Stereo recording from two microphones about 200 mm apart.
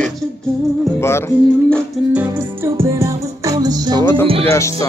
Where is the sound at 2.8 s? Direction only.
15° right (ahead or behind).